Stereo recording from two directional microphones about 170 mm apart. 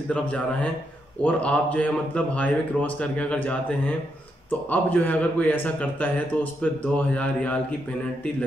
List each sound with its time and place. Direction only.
0.1 s speech: 5° left (ahead or behind)